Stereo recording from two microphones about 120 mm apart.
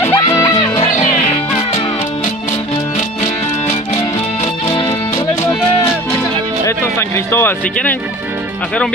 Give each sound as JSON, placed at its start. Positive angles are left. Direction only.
{"t": 0.0, "sound": "music", "side_deg": 25}
{"t": 6.6, "sound": "music", "side_deg": 20}